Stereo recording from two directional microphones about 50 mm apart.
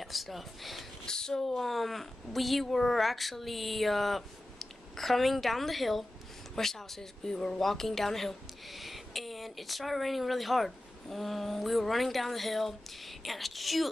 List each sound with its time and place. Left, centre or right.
0.0 s speech: centre
1.0 s speech: centre